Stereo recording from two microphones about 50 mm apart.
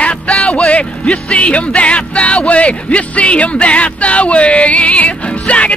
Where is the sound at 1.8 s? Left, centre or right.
Left.